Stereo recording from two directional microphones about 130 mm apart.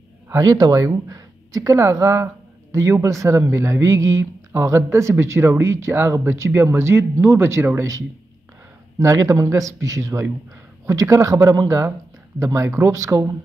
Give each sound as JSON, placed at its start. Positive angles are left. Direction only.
{"t": 0.3, "sound": "speech", "side_deg": -30}
{"t": 9.0, "sound": "speech", "side_deg": -25}